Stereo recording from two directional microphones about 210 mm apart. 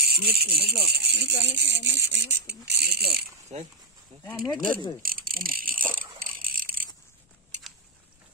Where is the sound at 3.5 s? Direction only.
35° right (ahead or behind).